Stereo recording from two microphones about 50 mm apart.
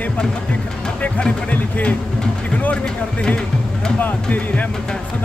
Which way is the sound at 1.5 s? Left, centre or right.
Left.